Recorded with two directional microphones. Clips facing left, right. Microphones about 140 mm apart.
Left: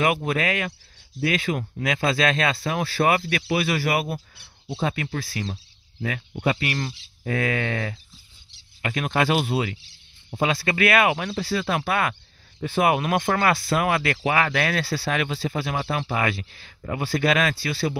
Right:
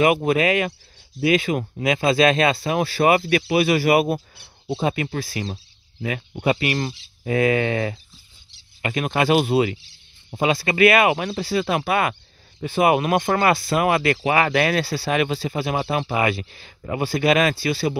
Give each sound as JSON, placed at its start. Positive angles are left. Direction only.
{"t": 0.0, "sound": "speech", "side_deg": -15}